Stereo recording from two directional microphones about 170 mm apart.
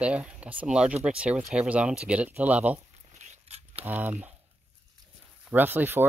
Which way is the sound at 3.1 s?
40° right (ahead or behind).